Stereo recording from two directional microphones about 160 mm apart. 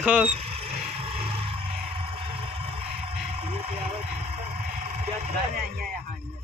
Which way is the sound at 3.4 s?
35° right (ahead or behind).